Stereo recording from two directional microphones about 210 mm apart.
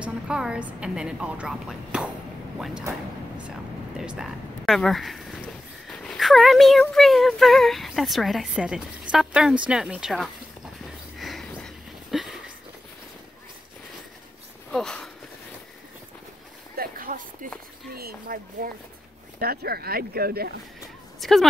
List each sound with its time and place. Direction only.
0.0 s a woman's voice: 5° right (ahead or behind)
4.0 s speech: 5° right (ahead or behind)
11.1 s a sound: centre (ahead or behind)
14.7 s speech: 5° left (ahead or behind)
16.7 s a sound: 45° right (ahead or behind)
17.9 s speech: 45° right (ahead or behind)
21.2 s a woman's voice: centre (ahead or behind)